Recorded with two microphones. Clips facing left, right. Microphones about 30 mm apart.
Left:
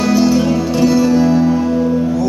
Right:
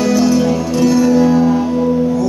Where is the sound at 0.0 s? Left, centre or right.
Centre.